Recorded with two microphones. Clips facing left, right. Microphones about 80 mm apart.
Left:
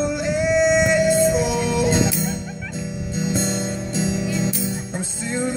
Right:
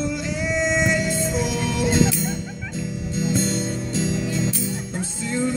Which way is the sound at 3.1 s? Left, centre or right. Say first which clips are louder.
Even; centre.